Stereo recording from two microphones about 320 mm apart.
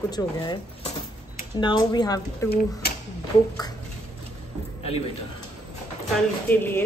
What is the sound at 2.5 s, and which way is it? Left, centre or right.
Speech, left.